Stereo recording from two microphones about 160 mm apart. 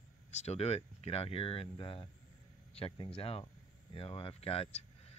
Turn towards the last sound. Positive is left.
turn(degrees=40)  # may be behind; listen again after turning